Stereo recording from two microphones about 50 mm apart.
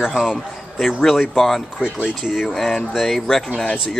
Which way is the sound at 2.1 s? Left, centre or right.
Centre.